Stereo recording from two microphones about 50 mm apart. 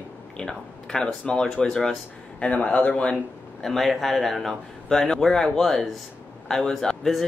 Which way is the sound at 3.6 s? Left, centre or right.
Centre.